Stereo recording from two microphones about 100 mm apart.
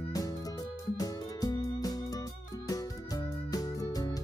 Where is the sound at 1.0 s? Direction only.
40° left (ahead or behind).